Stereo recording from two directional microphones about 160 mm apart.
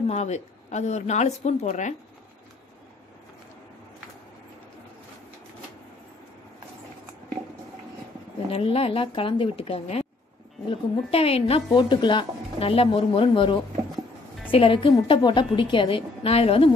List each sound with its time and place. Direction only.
0.1 s a woman's voice: 45° left (ahead or behind)
8.5 s speech: 35° left (ahead or behind)